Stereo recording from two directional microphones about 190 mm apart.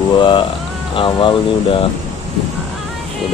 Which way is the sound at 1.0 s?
25° left (ahead or behind).